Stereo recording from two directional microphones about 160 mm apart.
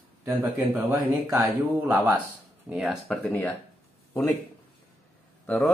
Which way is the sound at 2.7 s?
Centre (ahead or behind).